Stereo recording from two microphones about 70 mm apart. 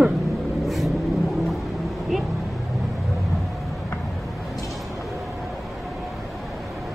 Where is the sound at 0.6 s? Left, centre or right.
Centre.